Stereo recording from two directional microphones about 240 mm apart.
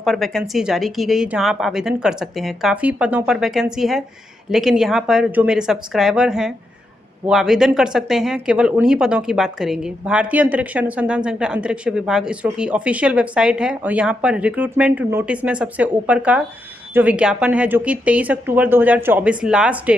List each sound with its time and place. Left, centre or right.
0.0 s speech: centre